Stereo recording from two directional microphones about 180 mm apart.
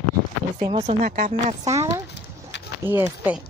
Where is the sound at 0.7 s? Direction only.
35° right (ahead or behind).